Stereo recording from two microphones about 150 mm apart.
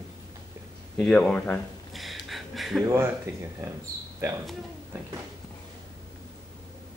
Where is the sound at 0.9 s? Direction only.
5° left (ahead or behind).